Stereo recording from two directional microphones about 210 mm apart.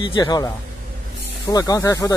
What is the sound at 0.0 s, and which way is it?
A man's voice, 20° left (ahead or behind).